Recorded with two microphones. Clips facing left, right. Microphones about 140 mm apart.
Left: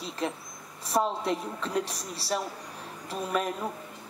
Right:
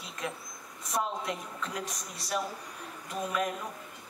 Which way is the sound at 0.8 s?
30° left (ahead or behind).